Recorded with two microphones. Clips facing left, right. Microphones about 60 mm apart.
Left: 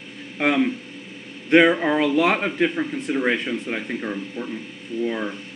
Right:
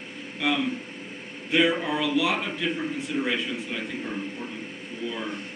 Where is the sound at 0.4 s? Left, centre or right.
Left.